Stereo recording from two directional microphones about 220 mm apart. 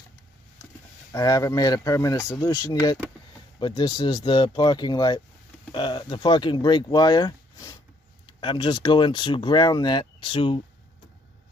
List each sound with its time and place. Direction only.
1.1 s speech: 15° left (ahead or behind)